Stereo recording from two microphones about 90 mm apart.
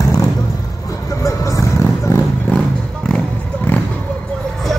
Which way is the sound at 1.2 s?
35° left (ahead or behind).